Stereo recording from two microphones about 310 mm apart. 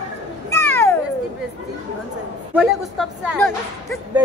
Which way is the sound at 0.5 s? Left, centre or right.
Centre.